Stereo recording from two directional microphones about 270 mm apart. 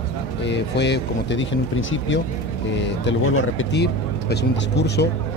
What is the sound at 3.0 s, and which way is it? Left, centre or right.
Speech, left.